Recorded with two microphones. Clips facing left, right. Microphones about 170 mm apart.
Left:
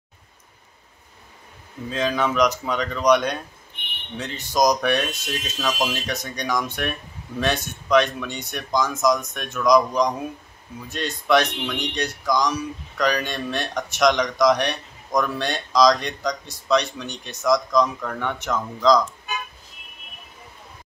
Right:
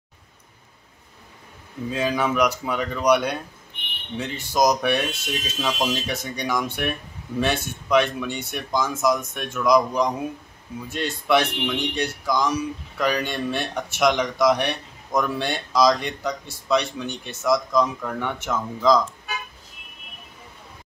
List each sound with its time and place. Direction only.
1.9 s speech: 10° right (ahead or behind)
4.6 s speech: 10° right (ahead or behind)